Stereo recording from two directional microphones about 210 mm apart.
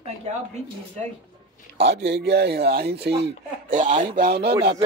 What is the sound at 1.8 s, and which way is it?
Speech, 55° right (ahead or behind).